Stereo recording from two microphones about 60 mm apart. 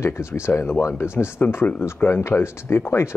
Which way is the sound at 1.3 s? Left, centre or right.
Left.